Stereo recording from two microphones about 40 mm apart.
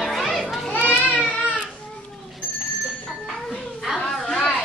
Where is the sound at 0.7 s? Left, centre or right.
Left.